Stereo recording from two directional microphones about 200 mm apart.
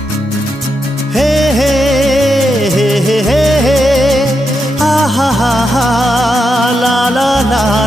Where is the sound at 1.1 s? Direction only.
Centre (ahead or behind).